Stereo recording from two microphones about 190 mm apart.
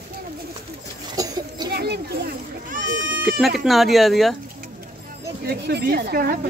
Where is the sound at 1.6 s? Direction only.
60° right (ahead or behind).